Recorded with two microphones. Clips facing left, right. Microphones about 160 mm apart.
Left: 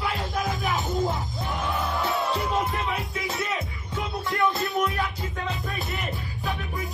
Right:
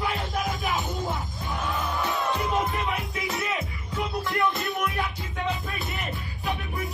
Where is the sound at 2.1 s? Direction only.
Centre (ahead or behind).